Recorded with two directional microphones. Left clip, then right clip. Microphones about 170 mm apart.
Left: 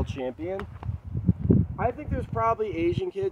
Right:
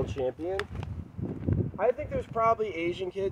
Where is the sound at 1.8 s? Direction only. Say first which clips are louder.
Right 2 dB; 35° left (ahead or behind).